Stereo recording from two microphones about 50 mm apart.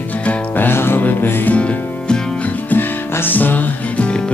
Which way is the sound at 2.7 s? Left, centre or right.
Left.